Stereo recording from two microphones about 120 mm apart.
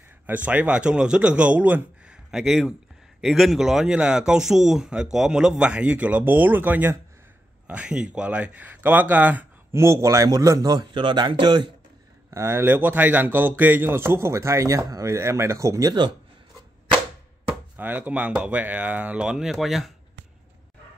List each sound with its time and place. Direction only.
0.3 s a man's voice: 15° right (ahead or behind); by 11.7 s 40° right (ahead or behind)
12.3 s speech: 25° right (ahead or behind)
17.7 s speech: 15° right (ahead or behind)